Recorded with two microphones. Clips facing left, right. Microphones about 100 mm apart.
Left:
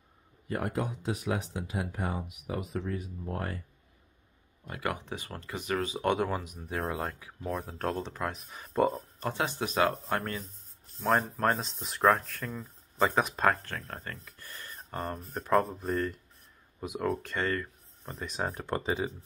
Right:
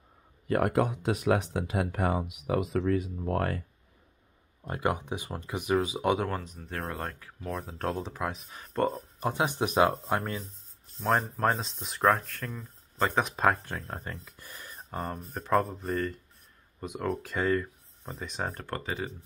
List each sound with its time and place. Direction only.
0.5 s speech: 65° right (ahead or behind)
4.6 s speech: 25° right (ahead or behind); by 9.0 s 5° left (ahead or behind)
9.2 s speech: 15° right (ahead or behind)
11.0 s speech: centre (ahead or behind)
13.7 s speech: 15° right (ahead or behind); by 18.7 s 5° left (ahead or behind)
18.7 s speech: 20° left (ahead or behind)